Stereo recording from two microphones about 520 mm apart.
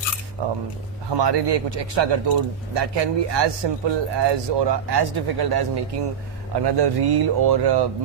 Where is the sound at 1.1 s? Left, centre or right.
Right.